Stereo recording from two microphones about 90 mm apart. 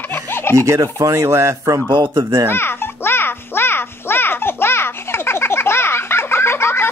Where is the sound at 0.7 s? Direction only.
35° right (ahead or behind).